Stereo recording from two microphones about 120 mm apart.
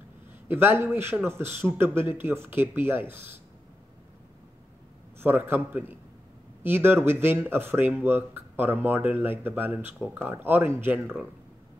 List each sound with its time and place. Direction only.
0.5 s a man's voice: 20° right (ahead or behind)
5.2 s speech: 20° right (ahead or behind)